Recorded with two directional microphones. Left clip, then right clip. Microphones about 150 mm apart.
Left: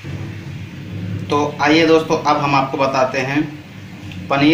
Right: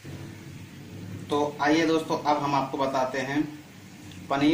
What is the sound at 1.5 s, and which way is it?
A man's voice, 25° right (ahead or behind).